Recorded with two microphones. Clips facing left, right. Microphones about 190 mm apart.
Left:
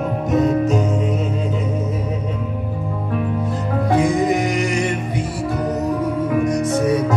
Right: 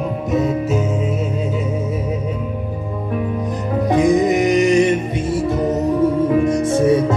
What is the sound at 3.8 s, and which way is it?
Music, 20° right (ahead or behind).